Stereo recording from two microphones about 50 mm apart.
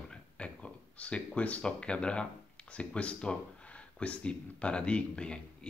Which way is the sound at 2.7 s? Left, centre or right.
Left.